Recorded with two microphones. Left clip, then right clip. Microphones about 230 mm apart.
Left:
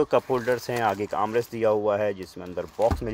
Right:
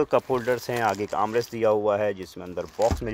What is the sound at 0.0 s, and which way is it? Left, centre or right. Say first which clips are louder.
Speech: even; centre.